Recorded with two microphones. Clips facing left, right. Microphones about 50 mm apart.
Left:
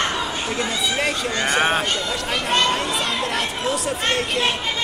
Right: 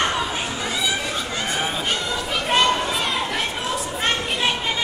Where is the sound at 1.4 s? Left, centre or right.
Left.